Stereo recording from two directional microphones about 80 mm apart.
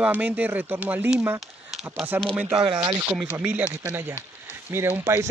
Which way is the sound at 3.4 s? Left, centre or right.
Centre.